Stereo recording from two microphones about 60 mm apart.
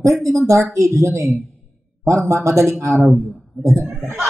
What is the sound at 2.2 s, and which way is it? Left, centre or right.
Speech, right.